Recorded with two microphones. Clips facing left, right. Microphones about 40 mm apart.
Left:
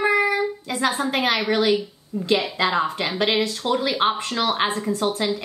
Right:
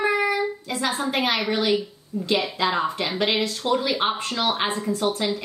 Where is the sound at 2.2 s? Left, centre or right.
Left.